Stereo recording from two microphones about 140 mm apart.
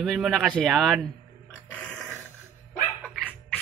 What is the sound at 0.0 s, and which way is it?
Speech, centre (ahead or behind).